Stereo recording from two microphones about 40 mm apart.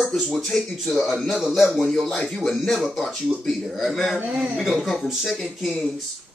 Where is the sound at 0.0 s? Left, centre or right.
Centre.